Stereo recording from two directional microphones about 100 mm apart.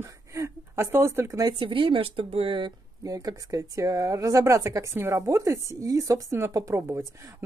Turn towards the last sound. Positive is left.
turn(degrees=-25)  # may be behind; listen again after turning